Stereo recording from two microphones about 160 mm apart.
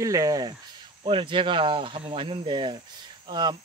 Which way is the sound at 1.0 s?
30° right (ahead or behind).